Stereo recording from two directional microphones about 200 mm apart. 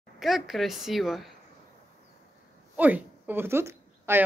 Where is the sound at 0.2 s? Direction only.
Centre (ahead or behind).